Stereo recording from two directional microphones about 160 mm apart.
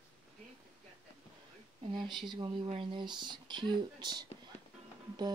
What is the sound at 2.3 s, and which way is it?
Speech, 30° right (ahead or behind).